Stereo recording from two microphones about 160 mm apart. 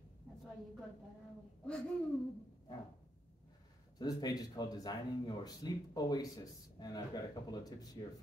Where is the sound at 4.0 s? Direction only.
25° left (ahead or behind).